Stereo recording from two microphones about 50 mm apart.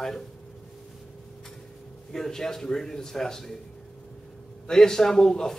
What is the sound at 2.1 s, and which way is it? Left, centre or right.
A man's voice, centre.